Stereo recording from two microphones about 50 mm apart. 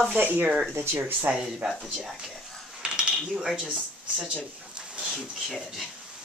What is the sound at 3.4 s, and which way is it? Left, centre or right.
Speech, centre.